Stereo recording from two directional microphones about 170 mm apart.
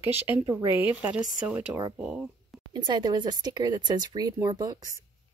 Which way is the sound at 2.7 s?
25° right (ahead or behind).